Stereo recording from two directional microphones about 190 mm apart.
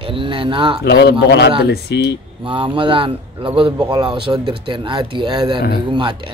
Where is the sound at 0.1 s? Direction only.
25° right (ahead or behind).